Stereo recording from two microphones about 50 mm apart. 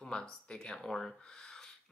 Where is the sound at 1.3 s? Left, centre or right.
Centre.